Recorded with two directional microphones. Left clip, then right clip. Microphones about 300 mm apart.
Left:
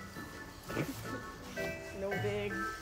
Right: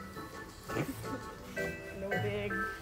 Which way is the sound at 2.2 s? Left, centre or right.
Centre.